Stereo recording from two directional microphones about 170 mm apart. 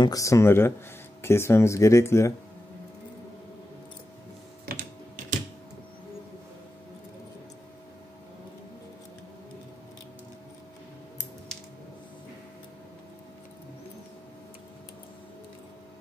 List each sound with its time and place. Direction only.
0.0 s speech: 20° left (ahead or behind)
4.6 s computer keyboard: 50° right (ahead or behind)